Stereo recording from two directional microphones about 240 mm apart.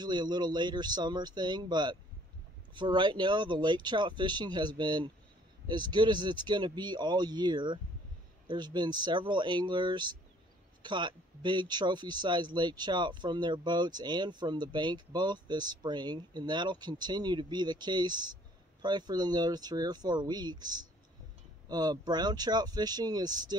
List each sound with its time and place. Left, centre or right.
0.0 s speech: centre